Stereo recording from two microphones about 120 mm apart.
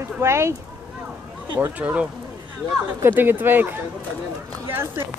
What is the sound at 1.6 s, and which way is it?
Speech, 15° right (ahead or behind).